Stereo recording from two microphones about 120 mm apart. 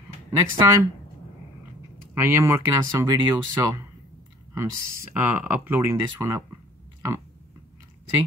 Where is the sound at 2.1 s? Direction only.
20° right (ahead or behind).